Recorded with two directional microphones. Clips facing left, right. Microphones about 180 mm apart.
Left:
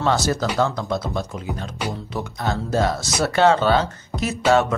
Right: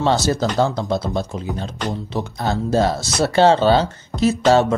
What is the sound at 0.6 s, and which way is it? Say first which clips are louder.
Speech: right 3 dB; 30° right (ahead or behind).